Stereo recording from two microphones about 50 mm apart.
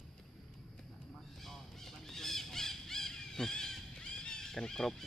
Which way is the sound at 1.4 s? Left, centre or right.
Centre.